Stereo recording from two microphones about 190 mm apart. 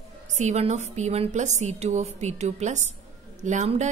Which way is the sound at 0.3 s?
40° right (ahead or behind).